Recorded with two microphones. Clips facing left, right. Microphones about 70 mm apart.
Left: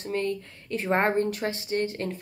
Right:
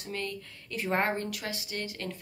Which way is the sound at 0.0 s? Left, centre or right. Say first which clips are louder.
Left 8 dB; left.